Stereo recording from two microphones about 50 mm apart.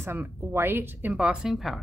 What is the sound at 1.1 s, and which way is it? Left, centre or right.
Speech, centre.